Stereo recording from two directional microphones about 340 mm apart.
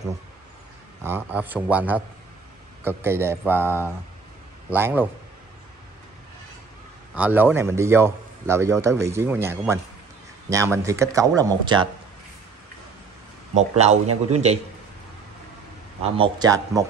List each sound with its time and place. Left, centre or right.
1.0 s a man's voice: centre
7.2 s a man's voice: centre
13.6 s a man's voice: centre
16.0 s a man's voice: centre